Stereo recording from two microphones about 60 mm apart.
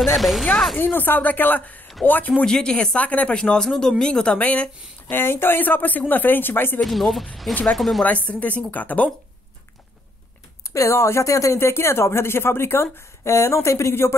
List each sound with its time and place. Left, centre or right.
0.0 s speech: centre
0.7 s speech: left
2.4 s speech: centre
4.4 s speech: left
5.1 s speech: left
6.8 s speech: centre
8.3 s speech: left
10.7 s speech: left
11.6 s a woman's voice: left